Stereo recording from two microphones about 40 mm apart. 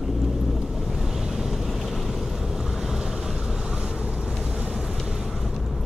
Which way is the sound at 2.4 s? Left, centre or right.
Centre.